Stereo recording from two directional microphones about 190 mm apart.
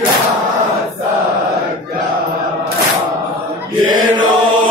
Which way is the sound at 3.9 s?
25° right (ahead or behind).